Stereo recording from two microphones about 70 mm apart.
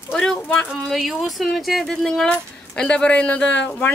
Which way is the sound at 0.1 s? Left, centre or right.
Centre.